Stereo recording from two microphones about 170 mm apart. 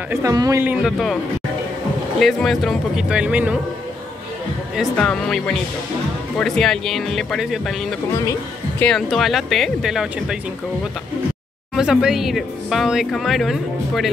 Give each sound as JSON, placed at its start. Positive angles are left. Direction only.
{"t": 0.1, "sound": "a man's voice", "side_deg": -20}
{"t": 0.6, "sound": "a man's voice", "side_deg": -10}
{"t": 2.1, "sound": "speech", "side_deg": 0}
{"t": 4.7, "sound": "speech", "side_deg": 5}
{"t": 11.7, "sound": "speech", "side_deg": -5}